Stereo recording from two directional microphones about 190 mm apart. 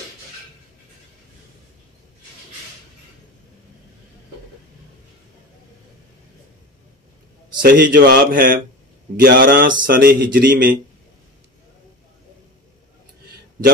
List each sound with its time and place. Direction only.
7.6 s speech: 55° right (ahead or behind)